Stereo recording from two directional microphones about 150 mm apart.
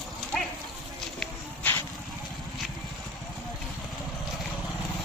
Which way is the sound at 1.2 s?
10° left (ahead or behind).